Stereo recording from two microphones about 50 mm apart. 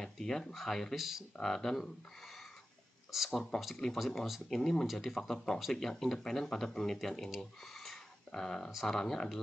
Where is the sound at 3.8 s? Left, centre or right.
Centre.